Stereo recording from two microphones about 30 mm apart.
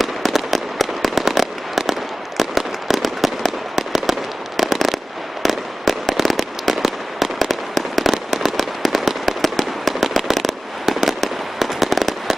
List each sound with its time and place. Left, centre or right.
0.0 s fireworks: centre
7.3 s fireworks: centre
8.1 s fireworks: centre